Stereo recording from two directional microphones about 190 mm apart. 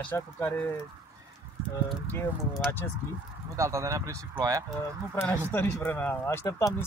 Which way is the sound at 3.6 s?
15° right (ahead or behind).